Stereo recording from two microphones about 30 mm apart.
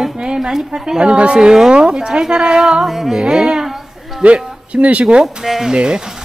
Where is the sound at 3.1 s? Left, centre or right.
Right.